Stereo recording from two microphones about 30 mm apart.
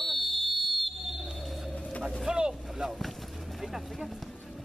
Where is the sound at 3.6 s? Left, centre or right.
Centre.